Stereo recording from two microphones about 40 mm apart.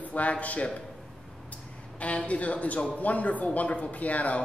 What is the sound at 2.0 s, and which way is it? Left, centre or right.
Speech, left.